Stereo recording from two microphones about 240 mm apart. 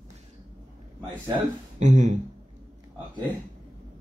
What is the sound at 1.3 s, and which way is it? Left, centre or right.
Speech, right.